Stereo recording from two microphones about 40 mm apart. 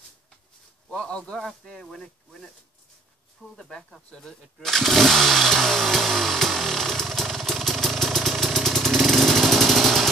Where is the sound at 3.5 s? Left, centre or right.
Centre.